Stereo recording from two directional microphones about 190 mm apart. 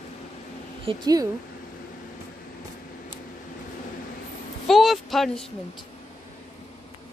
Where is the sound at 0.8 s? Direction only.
20° right (ahead or behind).